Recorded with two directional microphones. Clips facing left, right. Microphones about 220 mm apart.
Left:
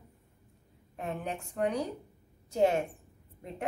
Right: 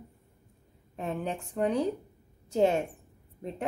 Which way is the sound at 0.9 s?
30° right (ahead or behind).